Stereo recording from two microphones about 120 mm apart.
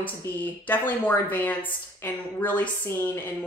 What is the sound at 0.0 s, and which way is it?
A woman's voice, 15° left (ahead or behind).